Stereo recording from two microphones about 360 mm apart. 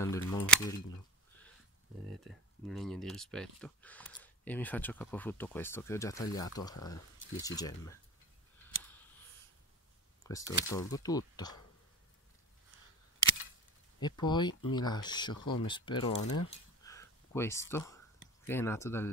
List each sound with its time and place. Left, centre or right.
0.0 s speech: centre
2.0 s speech: centre
10.2 s speech: centre
14.0 s speech: centre
16.3 s a sound: centre
18.5 s speech: centre